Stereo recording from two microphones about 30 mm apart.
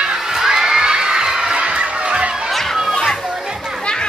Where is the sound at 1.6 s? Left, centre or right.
Right.